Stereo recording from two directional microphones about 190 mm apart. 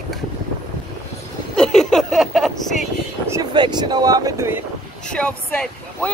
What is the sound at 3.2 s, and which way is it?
Speech, 20° right (ahead or behind).